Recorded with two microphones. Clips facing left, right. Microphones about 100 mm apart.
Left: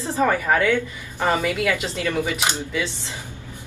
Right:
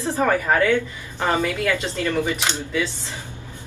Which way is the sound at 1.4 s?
15° left (ahead or behind).